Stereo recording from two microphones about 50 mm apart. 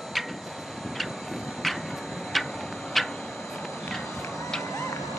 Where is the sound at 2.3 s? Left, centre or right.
Centre.